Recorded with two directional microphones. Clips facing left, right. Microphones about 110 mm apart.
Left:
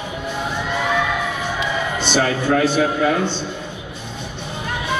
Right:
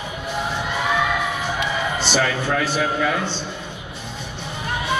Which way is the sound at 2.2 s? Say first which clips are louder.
Left 5 dB; 40° left (ahead or behind).